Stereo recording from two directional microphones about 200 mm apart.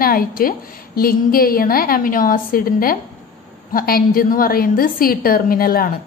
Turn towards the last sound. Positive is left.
turn(degrees=50)  # may be behind; listen again after turning